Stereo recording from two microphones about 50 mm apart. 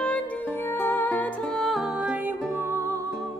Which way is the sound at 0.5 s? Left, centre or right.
Left.